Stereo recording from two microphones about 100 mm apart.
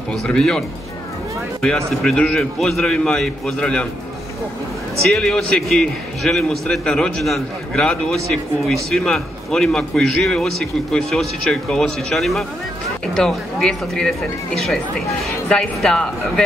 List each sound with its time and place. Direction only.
0.1 s a man's voice: 5° left (ahead or behind)
5.0 s a man's voice: 5° left (ahead or behind)
15.2 s a man's voice: 5° left (ahead or behind)